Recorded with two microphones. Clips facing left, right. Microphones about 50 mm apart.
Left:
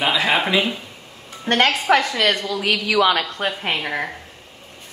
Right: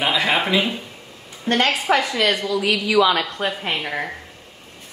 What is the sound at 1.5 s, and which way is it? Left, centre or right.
A woman's voice, left.